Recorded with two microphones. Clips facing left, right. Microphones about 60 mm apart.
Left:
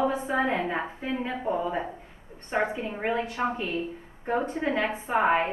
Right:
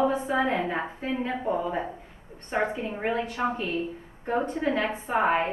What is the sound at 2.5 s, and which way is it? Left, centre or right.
A woman's voice, left.